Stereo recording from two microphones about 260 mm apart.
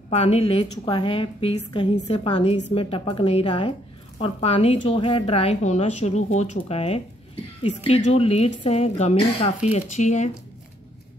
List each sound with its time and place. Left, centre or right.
0.1 s a woman's voice: left
8.1 s a woman's voice: left